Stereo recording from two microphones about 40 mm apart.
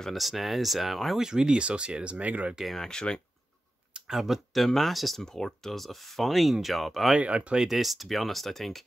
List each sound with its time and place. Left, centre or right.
0.1 s speech: centre
1.2 s speech: centre; by 2.5 s right
2.8 s speech: centre
4.1 s speech: centre
4.6 s speech: centre
5.2 s speech: centre
7.2 s speech: right
7.5 s speech: centre